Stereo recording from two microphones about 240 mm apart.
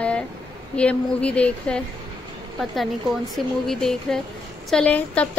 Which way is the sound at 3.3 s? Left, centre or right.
Centre.